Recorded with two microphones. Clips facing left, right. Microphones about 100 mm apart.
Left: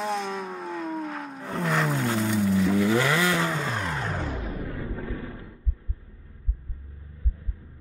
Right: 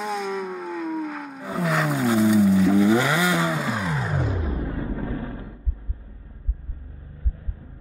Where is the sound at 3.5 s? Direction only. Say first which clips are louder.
Right 3 dB; 5° right (ahead or behind).